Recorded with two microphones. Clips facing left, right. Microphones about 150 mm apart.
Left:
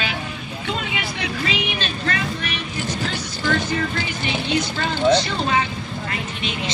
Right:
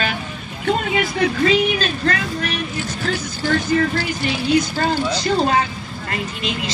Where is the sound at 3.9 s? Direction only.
20° left (ahead or behind).